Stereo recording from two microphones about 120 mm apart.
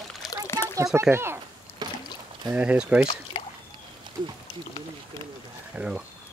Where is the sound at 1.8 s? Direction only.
35° right (ahead or behind).